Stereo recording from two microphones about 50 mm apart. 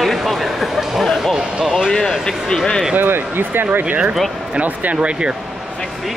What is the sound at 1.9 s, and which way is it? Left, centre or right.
Speech, centre.